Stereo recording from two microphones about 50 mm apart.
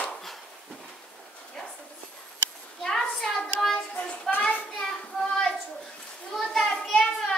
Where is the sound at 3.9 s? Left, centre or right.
Left.